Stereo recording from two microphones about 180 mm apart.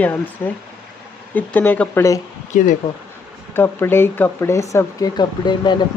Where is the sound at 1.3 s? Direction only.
10° left (ahead or behind).